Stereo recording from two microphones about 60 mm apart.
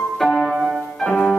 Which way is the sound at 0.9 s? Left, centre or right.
Centre.